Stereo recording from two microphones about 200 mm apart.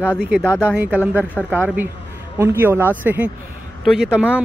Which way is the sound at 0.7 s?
5° right (ahead or behind).